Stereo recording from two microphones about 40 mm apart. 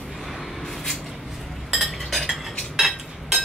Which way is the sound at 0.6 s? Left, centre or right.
Centre.